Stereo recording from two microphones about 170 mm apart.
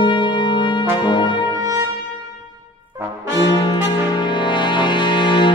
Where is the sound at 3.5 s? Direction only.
25° left (ahead or behind).